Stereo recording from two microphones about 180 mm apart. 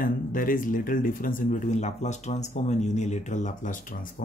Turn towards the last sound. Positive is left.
turn(degrees=50)  # may be behind; listen again after turning